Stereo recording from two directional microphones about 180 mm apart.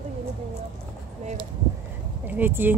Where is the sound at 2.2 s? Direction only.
10° right (ahead or behind).